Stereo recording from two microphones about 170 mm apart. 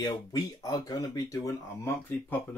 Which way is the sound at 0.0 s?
20° left (ahead or behind).